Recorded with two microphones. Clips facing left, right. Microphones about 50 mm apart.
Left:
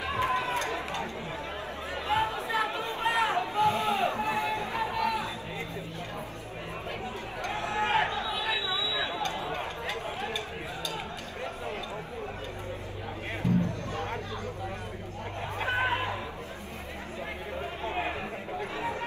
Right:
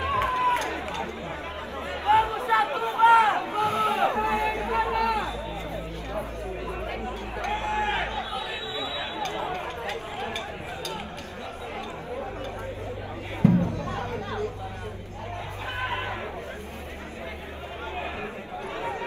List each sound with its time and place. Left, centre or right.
0.0 s run: right
2.0 s chatter: right
7.4 s a sound: right
8.3 s chatter: left
8.9 s a sound: left
9.2 s a sound: right
13.4 s music: right
13.9 s chatter: right
15.6 s chatter: left